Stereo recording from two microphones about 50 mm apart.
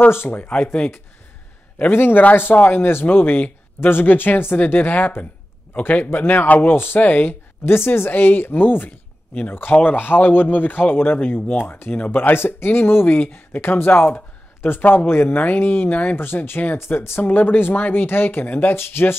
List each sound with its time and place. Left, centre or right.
0.5 s speech: centre
1.8 s a man's voice: left
16.7 s speech: left
17.2 s speech: left